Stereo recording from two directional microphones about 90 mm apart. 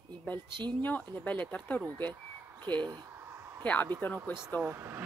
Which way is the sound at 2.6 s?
60° right (ahead or behind).